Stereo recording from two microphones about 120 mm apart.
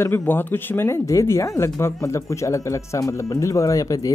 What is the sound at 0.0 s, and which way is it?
Speech, 15° left (ahead or behind).